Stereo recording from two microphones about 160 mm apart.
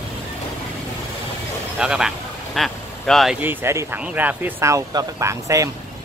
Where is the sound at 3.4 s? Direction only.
15° right (ahead or behind).